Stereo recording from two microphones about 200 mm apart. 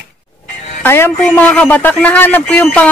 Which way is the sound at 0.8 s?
10° left (ahead or behind).